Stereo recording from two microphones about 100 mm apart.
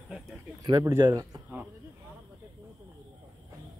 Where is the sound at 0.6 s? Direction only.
45° right (ahead or behind).